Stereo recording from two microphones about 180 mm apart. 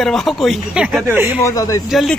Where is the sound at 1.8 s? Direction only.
Centre (ahead or behind).